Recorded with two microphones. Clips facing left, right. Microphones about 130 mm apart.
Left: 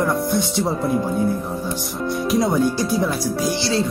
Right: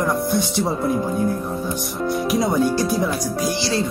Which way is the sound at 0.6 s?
Centre (ahead or behind).